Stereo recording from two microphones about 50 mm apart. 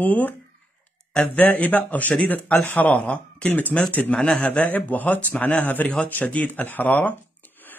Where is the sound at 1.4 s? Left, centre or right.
Left.